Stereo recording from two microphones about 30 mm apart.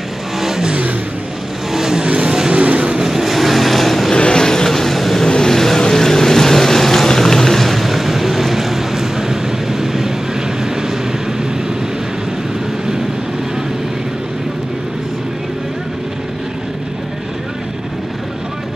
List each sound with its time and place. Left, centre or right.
0.4 s vehicle: centre
1.7 s vehicle: centre
2.5 s vehicle: right
2.8 s vehicle: right
3.1 s vehicle: centre
4.1 s vehicle: left
4.6 s vehicle: centre
5.2 s vehicle: left; by 9.0 s centre
9.2 s vehicle: centre